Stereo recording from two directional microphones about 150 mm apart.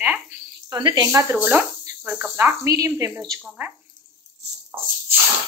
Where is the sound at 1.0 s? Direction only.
15° right (ahead or behind).